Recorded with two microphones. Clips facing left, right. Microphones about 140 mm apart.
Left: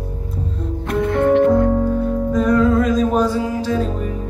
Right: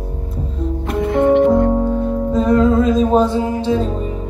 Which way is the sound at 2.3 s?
25° right (ahead or behind).